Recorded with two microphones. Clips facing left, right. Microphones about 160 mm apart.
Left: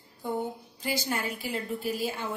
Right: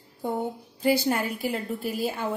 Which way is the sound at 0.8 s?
60° right (ahead or behind).